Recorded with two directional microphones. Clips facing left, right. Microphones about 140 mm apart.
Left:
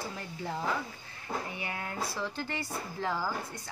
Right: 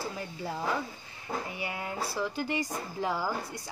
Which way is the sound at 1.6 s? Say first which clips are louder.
Right 2 dB; 10° right (ahead or behind).